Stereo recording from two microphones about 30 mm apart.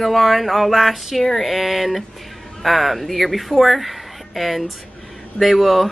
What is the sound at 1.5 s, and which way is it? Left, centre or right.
Speech, centre.